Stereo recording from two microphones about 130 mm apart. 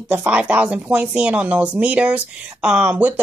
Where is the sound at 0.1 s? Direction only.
10° right (ahead or behind).